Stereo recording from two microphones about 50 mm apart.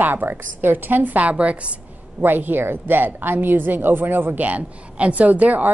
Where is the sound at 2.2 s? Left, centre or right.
Right.